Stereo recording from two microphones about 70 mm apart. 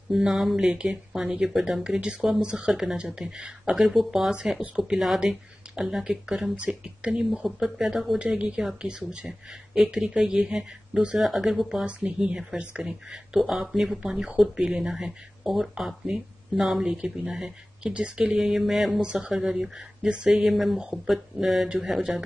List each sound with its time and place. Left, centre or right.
0.1 s speech: centre
7.4 s speech: centre
8.2 s speech: centre